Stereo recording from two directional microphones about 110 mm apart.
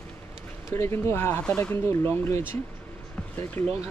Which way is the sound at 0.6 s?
25° left (ahead or behind).